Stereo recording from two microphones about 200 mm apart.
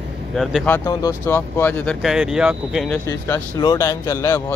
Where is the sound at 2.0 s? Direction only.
5° right (ahead or behind).